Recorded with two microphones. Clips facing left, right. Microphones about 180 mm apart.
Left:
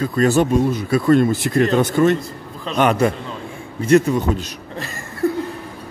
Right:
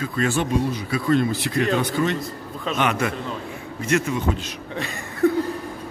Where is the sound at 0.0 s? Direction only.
40° left (ahead or behind).